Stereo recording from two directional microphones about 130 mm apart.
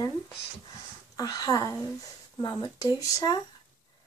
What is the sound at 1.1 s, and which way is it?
A woman's voice, 30° left (ahead or behind).